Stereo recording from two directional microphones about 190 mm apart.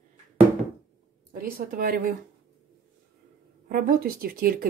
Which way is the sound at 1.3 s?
50° right (ahead or behind).